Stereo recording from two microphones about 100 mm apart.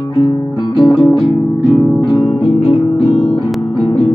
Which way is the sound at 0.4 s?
45° left (ahead or behind).